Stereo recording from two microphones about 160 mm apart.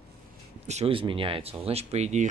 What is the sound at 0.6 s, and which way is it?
Speech, 40° right (ahead or behind).